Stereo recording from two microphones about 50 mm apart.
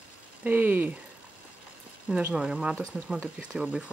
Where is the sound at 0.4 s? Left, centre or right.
Right.